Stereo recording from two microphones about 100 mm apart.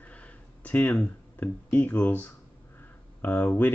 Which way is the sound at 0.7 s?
20° left (ahead or behind).